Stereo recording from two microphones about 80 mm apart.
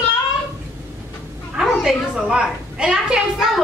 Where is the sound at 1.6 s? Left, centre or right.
Centre.